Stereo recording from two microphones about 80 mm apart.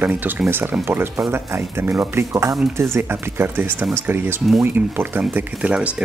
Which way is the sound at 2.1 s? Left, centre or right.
Right.